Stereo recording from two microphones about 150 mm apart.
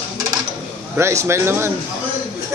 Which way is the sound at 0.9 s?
15° right (ahead or behind).